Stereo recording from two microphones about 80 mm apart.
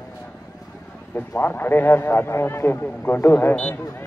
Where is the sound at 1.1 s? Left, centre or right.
Left.